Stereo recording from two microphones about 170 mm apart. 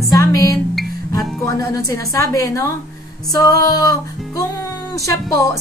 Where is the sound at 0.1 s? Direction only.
20° left (ahead or behind).